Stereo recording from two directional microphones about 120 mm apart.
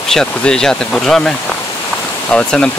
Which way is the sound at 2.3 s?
5° left (ahead or behind).